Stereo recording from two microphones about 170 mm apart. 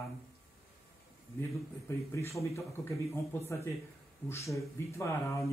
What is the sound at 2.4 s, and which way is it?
Speech, 15° left (ahead or behind).